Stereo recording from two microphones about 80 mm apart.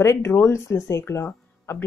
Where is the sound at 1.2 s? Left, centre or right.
Left.